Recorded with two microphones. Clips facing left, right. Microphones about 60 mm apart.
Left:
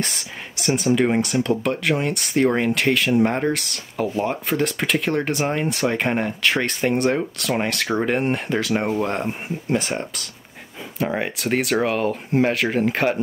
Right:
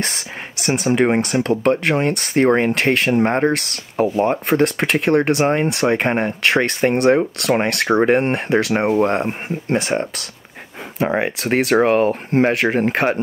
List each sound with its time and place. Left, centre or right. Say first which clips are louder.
0.0 s speech: right 3 dB; right
7.7 s speech: right 6 dB; right
8.0 s speech: right 5 dB; right